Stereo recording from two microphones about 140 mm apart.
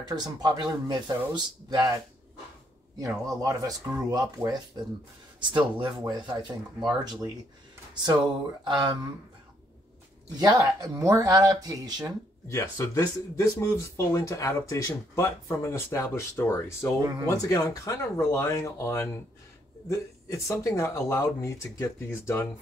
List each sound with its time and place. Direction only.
0.0 s speech: 30° right (ahead or behind)
3.0 s speech: 25° right (ahead or behind)
10.4 s speech: 25° right (ahead or behind)
12.4 s speech: 20° left (ahead or behind)
20.2 s speech: 20° left (ahead or behind)